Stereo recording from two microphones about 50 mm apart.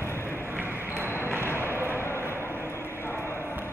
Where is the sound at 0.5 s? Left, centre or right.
Right.